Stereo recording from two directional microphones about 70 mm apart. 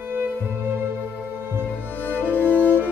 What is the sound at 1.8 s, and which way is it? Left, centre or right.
Music, left.